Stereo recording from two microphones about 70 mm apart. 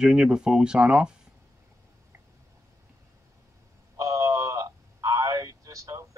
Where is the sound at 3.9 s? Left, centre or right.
Right.